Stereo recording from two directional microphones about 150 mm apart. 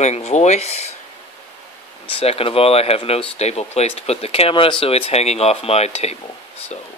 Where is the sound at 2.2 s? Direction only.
40° left (ahead or behind).